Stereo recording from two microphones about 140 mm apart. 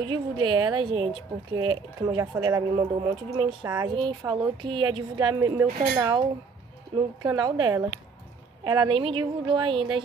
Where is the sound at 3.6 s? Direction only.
25° right (ahead or behind).